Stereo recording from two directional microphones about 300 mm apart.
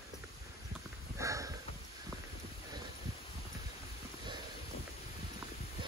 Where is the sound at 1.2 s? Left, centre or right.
Centre.